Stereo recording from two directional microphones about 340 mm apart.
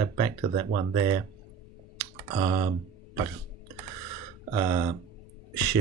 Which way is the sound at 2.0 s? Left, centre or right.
Centre.